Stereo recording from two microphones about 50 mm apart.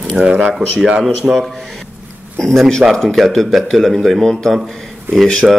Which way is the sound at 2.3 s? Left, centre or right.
Centre.